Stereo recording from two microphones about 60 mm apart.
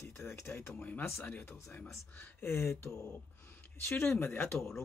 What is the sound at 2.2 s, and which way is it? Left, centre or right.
Speech, left.